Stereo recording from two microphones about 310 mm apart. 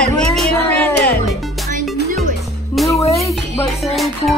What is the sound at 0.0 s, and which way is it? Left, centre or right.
Music, centre.